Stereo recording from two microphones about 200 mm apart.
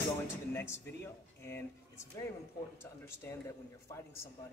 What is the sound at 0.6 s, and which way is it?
Speech, 10° left (ahead or behind).